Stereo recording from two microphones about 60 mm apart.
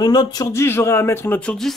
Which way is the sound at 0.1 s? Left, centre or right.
Left.